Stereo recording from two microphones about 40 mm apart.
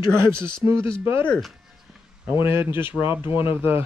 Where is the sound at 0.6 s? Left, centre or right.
Right.